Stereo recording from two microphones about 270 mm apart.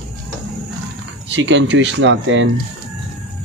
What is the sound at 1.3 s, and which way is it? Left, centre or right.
Speech, right.